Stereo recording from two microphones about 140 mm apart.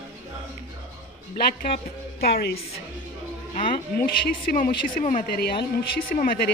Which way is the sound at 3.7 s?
90° left.